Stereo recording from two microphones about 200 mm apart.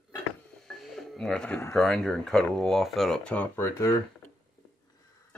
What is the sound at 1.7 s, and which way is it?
Speech, centre (ahead or behind).